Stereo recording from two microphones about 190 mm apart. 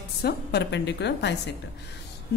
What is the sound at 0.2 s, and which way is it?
A woman's voice, 55° left (ahead or behind).